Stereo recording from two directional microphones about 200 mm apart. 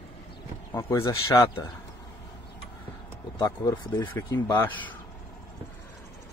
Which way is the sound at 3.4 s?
20° left (ahead or behind).